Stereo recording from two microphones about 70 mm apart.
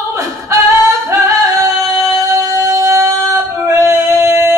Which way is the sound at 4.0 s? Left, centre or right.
Right.